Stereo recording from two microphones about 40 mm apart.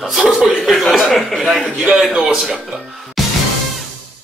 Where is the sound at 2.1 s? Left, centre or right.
Centre.